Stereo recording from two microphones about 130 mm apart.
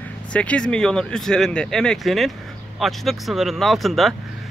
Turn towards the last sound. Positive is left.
turn(degrees=0)  # may be behind; listen again after turning